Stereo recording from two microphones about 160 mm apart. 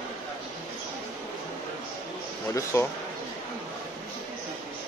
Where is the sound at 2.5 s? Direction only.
15° left (ahead or behind).